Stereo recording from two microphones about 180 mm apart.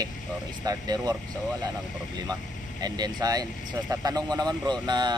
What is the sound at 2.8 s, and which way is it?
Speech, 20° right (ahead or behind).